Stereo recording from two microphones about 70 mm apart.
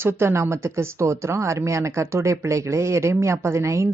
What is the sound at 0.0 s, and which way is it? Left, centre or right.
Speech, right.